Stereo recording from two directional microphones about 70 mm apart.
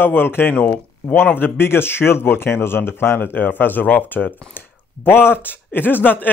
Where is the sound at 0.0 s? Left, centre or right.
Left.